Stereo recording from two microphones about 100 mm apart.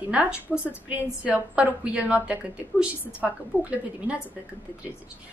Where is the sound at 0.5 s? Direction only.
5° left (ahead or behind).